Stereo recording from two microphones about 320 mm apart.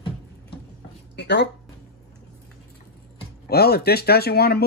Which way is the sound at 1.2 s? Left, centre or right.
Left.